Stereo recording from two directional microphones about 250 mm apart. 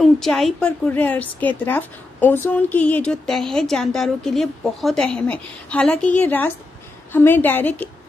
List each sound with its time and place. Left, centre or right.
0.0 s a woman's voice: centre